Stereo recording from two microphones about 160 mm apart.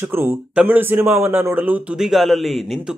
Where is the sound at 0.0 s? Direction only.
15° right (ahead or behind).